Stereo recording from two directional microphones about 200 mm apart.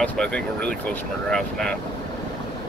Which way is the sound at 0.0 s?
5° left (ahead or behind).